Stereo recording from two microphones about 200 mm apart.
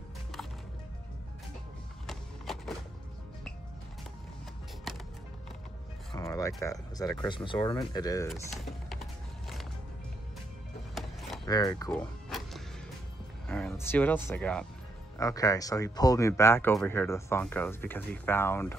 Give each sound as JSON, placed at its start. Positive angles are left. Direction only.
{"t": 2.0, "sound": "a sound", "side_deg": 0}
{"t": 6.1, "sound": "speech", "side_deg": 15}
{"t": 8.3, "sound": "typing", "side_deg": 0}
{"t": 11.0, "sound": "a sound", "side_deg": 0}
{"t": 11.4, "sound": "speech", "side_deg": 20}
{"t": 11.9, "sound": "power windows", "side_deg": 0}
{"t": 13.5, "sound": "speech", "side_deg": 5}
{"t": 15.1, "sound": "speech", "side_deg": 15}